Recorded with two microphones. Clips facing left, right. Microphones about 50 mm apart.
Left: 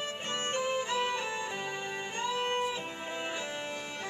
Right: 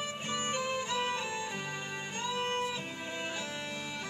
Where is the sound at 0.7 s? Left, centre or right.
Centre.